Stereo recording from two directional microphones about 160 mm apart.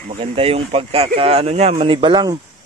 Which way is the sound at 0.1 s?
35° right (ahead or behind).